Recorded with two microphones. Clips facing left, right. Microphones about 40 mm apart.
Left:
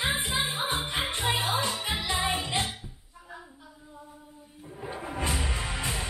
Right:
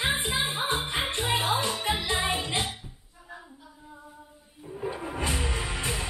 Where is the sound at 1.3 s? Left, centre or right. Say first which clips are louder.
Right 5 dB; right.